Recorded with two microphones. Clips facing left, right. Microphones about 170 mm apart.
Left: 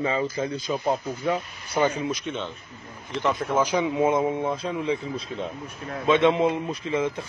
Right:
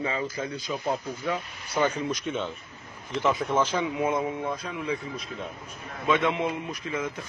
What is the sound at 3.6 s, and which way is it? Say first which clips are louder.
Speech: left 3 dB; 15° left (ahead or behind).